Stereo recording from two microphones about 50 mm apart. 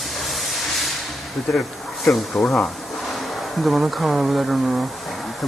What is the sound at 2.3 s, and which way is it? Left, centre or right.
Speech, left.